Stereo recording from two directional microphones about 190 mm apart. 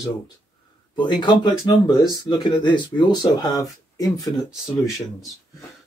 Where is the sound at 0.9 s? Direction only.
25° left (ahead or behind).